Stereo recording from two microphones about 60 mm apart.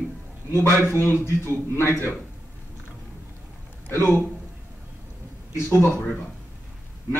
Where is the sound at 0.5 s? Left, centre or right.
Left.